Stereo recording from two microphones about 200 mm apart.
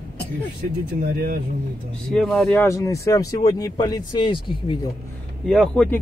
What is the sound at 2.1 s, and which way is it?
Speech, centre (ahead or behind).